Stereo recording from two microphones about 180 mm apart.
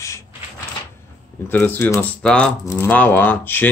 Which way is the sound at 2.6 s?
15° left (ahead or behind).